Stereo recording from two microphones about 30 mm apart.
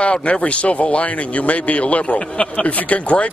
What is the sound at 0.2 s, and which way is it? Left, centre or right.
Speech, left.